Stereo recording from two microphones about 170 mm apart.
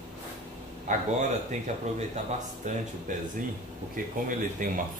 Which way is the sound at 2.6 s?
50° right (ahead or behind).